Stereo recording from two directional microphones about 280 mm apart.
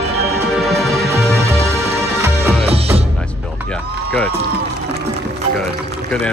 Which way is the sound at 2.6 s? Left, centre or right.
Right.